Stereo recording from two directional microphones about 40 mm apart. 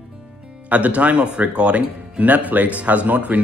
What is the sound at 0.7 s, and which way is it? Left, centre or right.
Speech, right.